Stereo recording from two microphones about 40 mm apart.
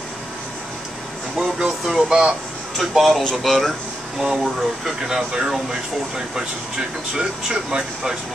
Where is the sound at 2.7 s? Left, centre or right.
Centre.